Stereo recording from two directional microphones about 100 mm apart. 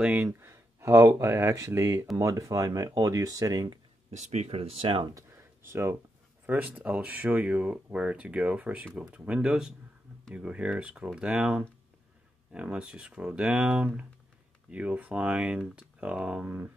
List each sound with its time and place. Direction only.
0.1 s speech: 20° right (ahead or behind)
4.5 s speech: 80° right; by 5.1 s 60° right (ahead or behind)
5.1 s a sound: 30° right (ahead or behind)
6.4 s speech: 15° right (ahead or behind)